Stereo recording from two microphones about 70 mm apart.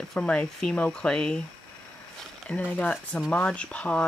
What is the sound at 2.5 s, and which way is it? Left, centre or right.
Speech, centre.